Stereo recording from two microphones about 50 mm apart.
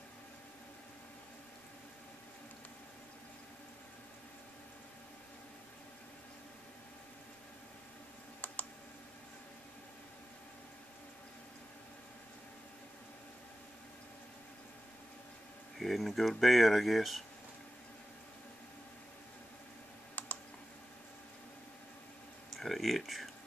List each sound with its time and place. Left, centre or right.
8.4 s computer keyboard: left
15.8 s speech: centre
20.2 s computer keyboard: left
22.6 s speech: centre